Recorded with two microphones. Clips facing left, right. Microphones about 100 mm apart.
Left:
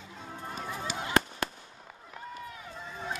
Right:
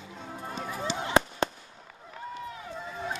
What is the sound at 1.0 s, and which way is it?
Fireworks, 25° right (ahead or behind).